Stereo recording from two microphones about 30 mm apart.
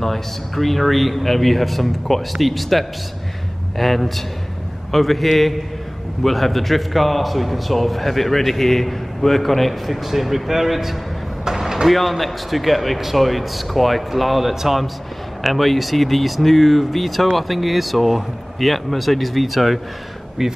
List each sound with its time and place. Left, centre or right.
0.0 s a man's voice: centre
11.4 s vehicle: centre
11.9 s a man's voice: centre
15.4 s a man's voice: centre